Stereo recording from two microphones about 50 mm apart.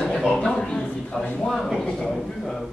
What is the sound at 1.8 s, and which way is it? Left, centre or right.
Speech, centre.